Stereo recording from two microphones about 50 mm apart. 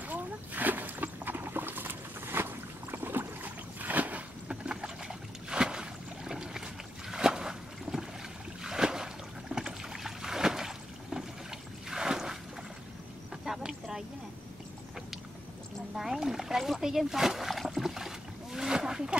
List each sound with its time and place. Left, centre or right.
0.0 s boat: right
3.4 s boat: right
4.5 s boat: centre
11.9 s a sound: centre
13.6 s vehicle: centre
16.0 s a sound: centre
16.8 s splash: centre